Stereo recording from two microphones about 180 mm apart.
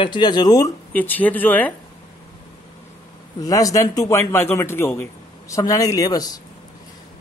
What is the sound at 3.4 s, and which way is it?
A man's voice, 20° left (ahead or behind).